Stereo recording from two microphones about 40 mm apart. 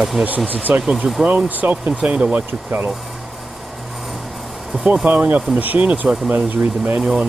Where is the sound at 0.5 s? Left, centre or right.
Right.